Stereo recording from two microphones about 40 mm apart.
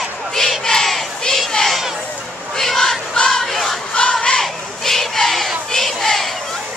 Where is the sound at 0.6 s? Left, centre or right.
Centre.